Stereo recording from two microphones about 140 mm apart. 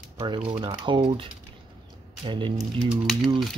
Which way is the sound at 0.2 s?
40° right (ahead or behind).